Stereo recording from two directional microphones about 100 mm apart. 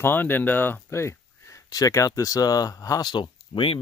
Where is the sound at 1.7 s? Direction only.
35° left (ahead or behind).